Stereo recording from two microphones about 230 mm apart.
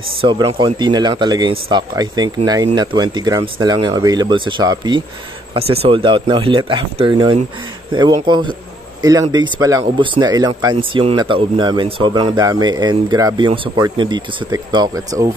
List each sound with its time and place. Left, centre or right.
0.2 s speech: right